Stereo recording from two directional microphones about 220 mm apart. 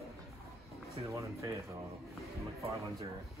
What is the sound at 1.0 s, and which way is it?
Speech, 15° right (ahead or behind).